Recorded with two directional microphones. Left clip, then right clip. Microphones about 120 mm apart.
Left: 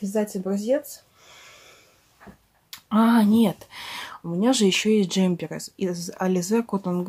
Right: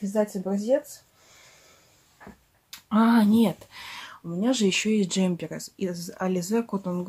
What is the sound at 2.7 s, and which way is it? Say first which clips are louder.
Speech: left 2 dB; 20° left (ahead or behind).